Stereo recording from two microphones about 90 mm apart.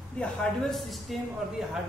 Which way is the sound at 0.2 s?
10° left (ahead or behind).